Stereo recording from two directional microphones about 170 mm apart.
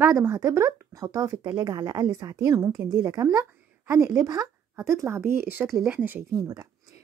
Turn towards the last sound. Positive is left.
turn(degrees=-20)  # may be behind; listen again after turning